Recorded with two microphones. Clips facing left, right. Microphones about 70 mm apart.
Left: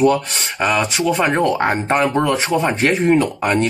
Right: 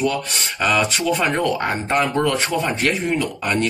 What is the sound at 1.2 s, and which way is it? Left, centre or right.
Speech, left.